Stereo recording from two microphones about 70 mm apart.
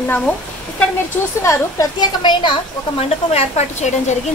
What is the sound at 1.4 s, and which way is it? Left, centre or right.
Speech, left.